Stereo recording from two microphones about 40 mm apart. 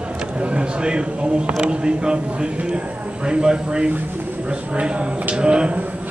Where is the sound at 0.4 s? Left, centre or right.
Right.